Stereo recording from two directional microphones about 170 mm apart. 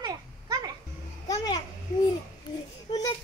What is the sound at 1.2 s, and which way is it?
Babbling, 20° left (ahead or behind).